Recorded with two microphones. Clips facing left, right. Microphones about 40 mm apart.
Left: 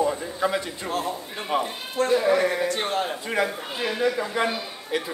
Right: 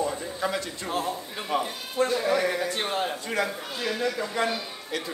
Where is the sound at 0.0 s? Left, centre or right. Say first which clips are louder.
Left 4 dB; centre.